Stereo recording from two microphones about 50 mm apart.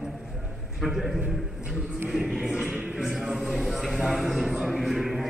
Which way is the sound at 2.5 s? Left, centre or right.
Right.